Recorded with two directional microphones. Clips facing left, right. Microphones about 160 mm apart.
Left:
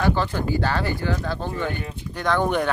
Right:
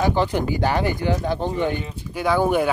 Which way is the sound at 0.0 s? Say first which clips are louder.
Right 2 dB; 15° right (ahead or behind).